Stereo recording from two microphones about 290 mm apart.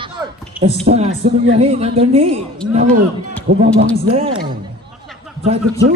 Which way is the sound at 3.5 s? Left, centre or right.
Right.